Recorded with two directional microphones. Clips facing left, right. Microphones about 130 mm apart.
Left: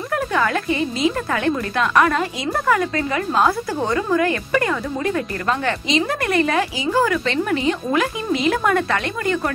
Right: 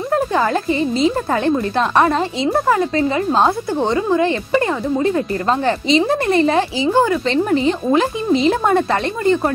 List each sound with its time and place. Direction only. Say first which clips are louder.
0.1 s speech: right 3 dB; 30° right (ahead or behind)